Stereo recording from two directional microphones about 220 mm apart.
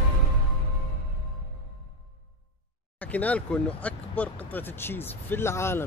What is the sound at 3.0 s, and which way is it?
Speech, 5° left (ahead or behind).